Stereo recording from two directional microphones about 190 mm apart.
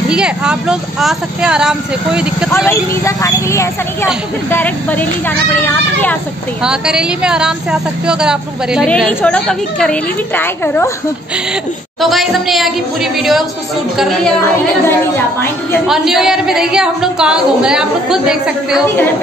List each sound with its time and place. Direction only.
0.1 s a woman's voice: 5° right (ahead or behind)
2.5 s speech: 10° left (ahead or behind)
6.6 s a woman's voice: 5° right (ahead or behind)
12.0 s a woman's voice: centre (ahead or behind)
14.4 s speech: 10° left (ahead or behind)
15.9 s a woman's voice: centre (ahead or behind)